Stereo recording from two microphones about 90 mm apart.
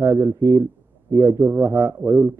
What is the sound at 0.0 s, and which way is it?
A man's voice, 35° right (ahead or behind).